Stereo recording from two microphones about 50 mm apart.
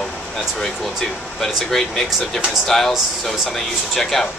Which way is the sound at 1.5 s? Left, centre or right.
Centre.